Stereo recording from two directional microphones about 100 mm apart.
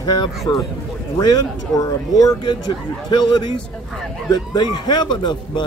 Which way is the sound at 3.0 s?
45° left (ahead or behind).